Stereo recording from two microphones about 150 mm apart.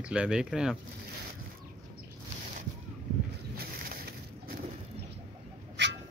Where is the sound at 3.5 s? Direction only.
90° right.